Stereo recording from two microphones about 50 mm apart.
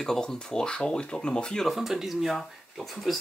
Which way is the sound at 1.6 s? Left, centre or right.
Centre.